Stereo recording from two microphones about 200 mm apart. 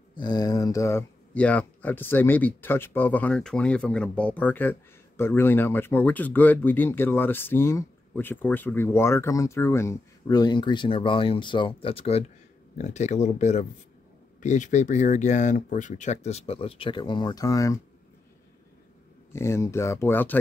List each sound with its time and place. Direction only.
0.1 s speech: 20° left (ahead or behind)
19.3 s speech: 15° left (ahead or behind)